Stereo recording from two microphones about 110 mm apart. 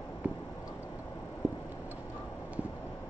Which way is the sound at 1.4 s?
15° right (ahead or behind).